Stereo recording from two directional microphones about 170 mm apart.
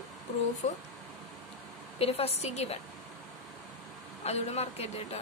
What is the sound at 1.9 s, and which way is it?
Speech, 35° left (ahead or behind).